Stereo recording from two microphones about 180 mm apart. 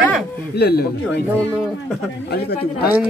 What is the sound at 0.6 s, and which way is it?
Speech, 60° left (ahead or behind).